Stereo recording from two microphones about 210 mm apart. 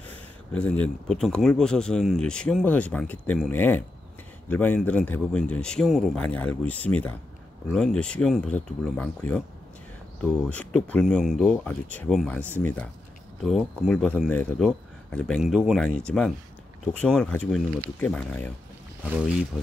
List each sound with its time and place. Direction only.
0.1 s speech: 5° left (ahead or behind)